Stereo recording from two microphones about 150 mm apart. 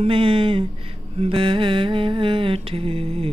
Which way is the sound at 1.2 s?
35° right (ahead or behind).